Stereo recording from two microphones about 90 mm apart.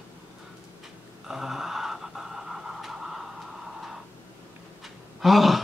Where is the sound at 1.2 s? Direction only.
5° right (ahead or behind).